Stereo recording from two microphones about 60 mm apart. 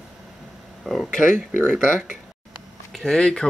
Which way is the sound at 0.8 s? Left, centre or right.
Centre.